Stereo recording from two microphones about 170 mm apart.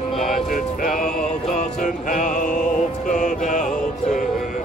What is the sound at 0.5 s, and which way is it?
Music, 50° left (ahead or behind).